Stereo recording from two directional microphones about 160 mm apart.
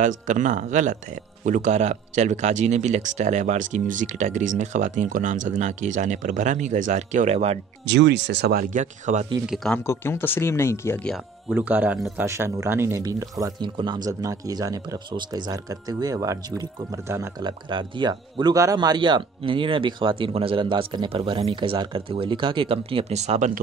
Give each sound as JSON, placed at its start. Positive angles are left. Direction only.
{"t": 0.0, "sound": "speech", "side_deg": -50}
{"t": 7.8, "sound": "speech", "side_deg": -90}
{"t": 8.6, "sound": "speech", "side_deg": -50}
{"t": 9.5, "sound": "speech", "side_deg": 0}
{"t": 9.8, "sound": "speech", "side_deg": 15}
{"t": 11.4, "sound": "speech", "side_deg": -10}
{"t": 17.5, "sound": "speech", "side_deg": -30}